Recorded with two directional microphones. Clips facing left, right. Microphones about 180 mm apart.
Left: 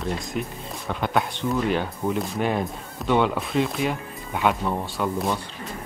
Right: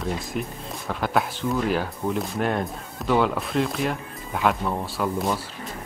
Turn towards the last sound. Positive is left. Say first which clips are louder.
# even
turn(degrees=0)  # may be behind; listen again after turning